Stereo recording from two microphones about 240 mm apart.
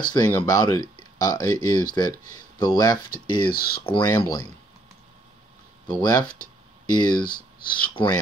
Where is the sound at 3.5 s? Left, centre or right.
Left.